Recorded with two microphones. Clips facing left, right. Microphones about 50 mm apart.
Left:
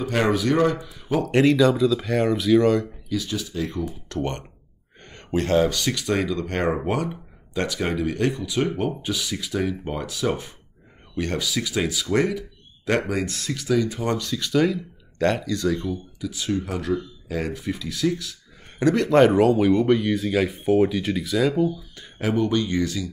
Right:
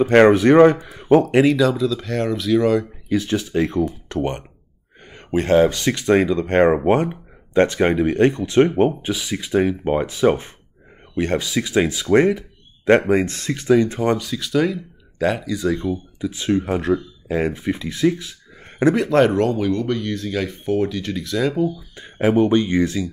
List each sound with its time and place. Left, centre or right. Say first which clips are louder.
0.1 s speech: right 9 dB; right
1.2 s speech: right 2 dB; centre
3.1 s speech: right 10 dB; right
4.1 s speech: right 4 dB; centre
5.0 s a sound: right 3 dB; centre
5.5 s speech: right 6 dB; right
14.2 s speech: right 1 dB; centre; by 18.9 s right
19.0 s speech: even; centre
21.9 s speech: right 7 dB; right